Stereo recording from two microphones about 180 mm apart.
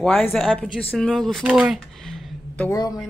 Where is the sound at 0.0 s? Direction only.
5° left (ahead or behind).